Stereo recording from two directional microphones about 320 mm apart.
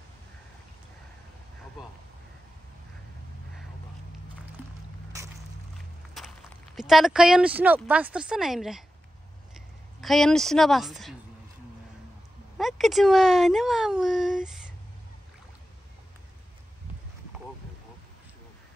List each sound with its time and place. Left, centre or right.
6.1 s speech: centre
9.9 s speech: centre
12.5 s speech: centre